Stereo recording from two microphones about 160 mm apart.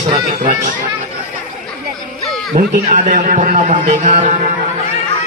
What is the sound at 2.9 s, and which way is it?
Speech, 55° right (ahead or behind).